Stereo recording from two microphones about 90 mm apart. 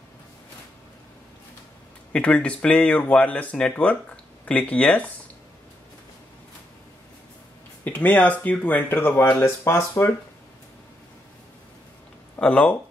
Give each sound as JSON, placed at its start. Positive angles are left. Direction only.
{"t": 2.1, "sound": "speech", "side_deg": 10}
{"t": 7.8, "sound": "speech", "side_deg": 15}
{"t": 12.4, "sound": "speech", "side_deg": 15}